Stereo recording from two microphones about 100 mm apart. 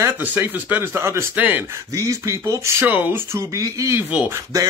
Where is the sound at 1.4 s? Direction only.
15° right (ahead or behind).